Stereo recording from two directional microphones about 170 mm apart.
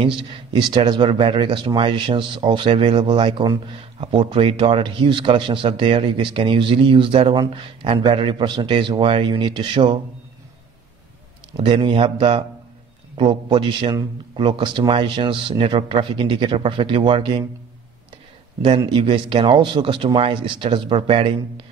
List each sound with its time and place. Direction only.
0.0 s speech: 30° right (ahead or behind)
11.5 s speech: 30° right (ahead or behind)
18.8 s speech: 25° right (ahead or behind)